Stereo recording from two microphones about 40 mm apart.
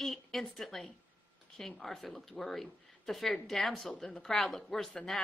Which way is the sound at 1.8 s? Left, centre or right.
Centre.